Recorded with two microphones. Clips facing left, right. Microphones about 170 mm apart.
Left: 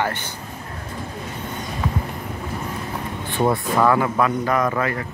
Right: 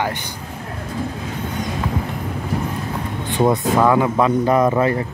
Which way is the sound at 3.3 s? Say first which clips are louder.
Right 3 dB; 15° right (ahead or behind).